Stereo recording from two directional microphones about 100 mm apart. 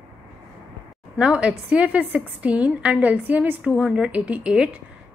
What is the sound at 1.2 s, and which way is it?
A woman's voice, 10° right (ahead or behind).